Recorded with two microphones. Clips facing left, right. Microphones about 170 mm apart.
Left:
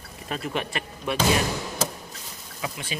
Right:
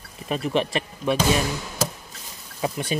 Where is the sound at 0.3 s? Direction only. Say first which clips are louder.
Right 6 dB; 25° right (ahead or behind).